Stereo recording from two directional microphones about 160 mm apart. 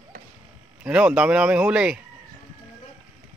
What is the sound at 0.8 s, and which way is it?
Speech, 10° right (ahead or behind).